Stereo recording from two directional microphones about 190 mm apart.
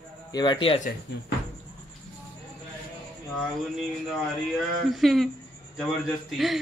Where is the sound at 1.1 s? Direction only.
60° left (ahead or behind).